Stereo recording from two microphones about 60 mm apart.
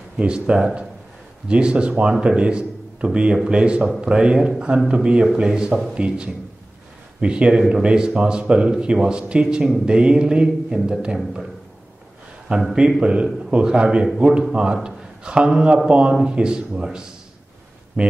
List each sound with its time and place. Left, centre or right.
0.2 s a man's voice: centre
12.4 s a man's voice: centre